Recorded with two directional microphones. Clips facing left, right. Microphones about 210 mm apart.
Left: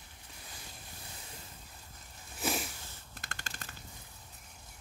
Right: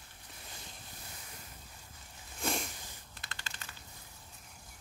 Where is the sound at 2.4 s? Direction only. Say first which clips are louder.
Left 1 dB; 5° left (ahead or behind).